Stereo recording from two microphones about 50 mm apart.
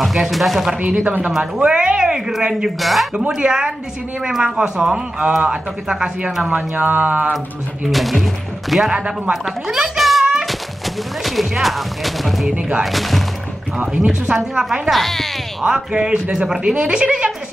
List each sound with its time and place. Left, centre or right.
0.0 s speech: centre
0.7 s speech: right; by 3.1 s centre
3.2 s speech: centre
6.5 s speech: right
7.8 s speech: centre
9.3 s a sound: centre
11.2 s speech: centre
12.5 s speech: centre
12.8 s speech: centre
14.0 s speech: centre
14.9 s speech: centre
15.6 s speech: centre